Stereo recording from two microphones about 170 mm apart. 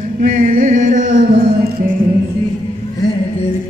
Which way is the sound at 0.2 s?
55° right (ahead or behind).